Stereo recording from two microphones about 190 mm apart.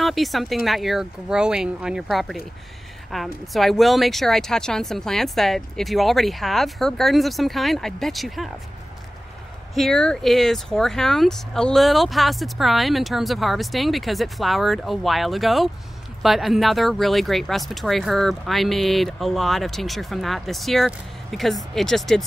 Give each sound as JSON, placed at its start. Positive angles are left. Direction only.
{"t": 0.0, "sound": "speech", "side_deg": 0}
{"t": 9.8, "sound": "speech", "side_deg": 5}